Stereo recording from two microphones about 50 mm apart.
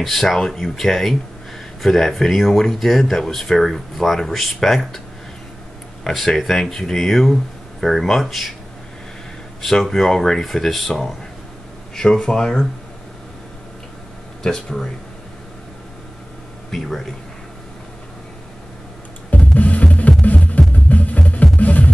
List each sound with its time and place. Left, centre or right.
0.0 s speech: centre
6.0 s speech: centre
9.6 s speech: centre
14.4 s speech: centre
16.7 s speech: centre
19.3 s music: left